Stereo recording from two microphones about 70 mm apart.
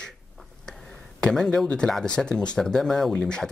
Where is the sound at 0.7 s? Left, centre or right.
Centre.